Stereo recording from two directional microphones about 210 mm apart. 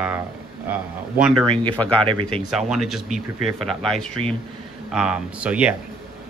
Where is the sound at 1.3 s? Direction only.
25° right (ahead or behind).